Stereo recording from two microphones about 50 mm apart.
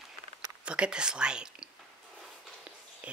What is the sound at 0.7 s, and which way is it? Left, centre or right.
Speech, centre.